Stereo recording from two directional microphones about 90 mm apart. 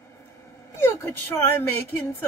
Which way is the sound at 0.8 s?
25° left (ahead or behind).